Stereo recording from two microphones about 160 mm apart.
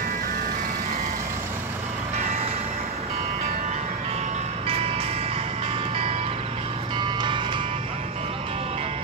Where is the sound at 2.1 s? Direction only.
45° right (ahead or behind).